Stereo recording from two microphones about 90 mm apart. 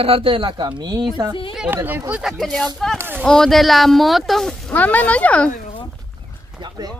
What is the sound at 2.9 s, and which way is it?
Speech, 25° right (ahead or behind).